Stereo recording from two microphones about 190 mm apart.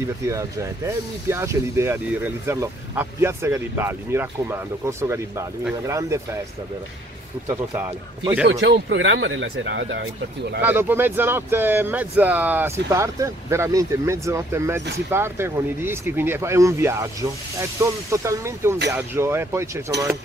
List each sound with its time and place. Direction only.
0.2 s speech: 15° right (ahead or behind)
7.4 s speech: 15° right (ahead or behind)
8.5 s speech: 75° right (ahead or behind)
10.6 s speech: 10° right (ahead or behind)